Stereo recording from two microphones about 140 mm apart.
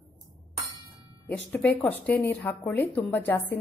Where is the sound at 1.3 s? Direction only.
10° left (ahead or behind).